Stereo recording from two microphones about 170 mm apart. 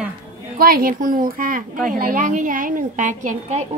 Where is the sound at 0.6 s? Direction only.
60° right (ahead or behind).